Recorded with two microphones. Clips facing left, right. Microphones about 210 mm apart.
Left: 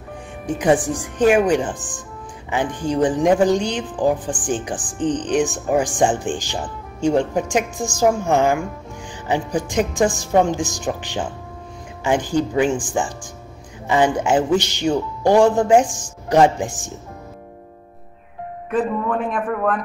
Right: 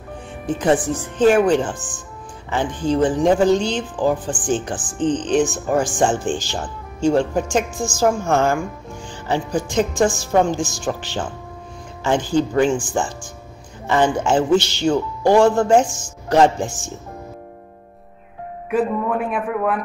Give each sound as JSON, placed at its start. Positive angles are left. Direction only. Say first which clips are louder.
{"t": 0.5, "sound": "speech", "louder": "even", "side_deg": 15}
{"t": 18.7, "sound": "a man's voice", "louder": "right 1 dB", "side_deg": -10}